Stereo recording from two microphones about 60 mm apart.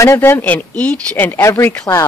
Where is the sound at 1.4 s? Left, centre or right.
Left.